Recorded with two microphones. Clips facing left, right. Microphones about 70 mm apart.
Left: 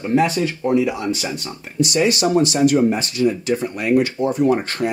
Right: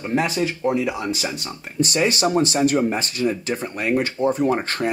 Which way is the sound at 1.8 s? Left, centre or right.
Right.